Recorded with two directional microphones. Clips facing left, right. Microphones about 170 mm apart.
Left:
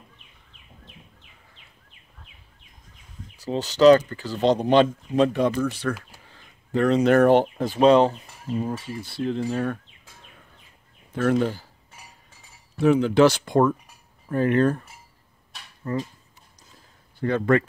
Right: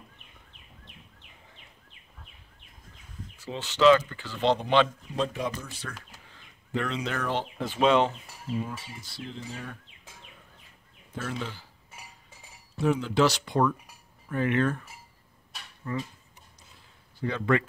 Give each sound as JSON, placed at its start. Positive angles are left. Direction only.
{"t": 3.3, "sound": "speech", "side_deg": 40}
{"t": 5.1, "sound": "speech", "side_deg": 60}
{"t": 6.7, "sound": "speech", "side_deg": 45}
{"t": 9.0, "sound": "speech", "side_deg": 60}
{"t": 11.1, "sound": "speech", "side_deg": 55}
{"t": 12.7, "sound": "speech", "side_deg": 65}
{"t": 15.8, "sound": "speech", "side_deg": 40}
{"t": 17.2, "sound": "speech", "side_deg": 50}